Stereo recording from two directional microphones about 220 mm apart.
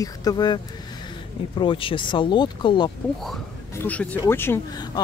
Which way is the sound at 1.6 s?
25° left (ahead or behind).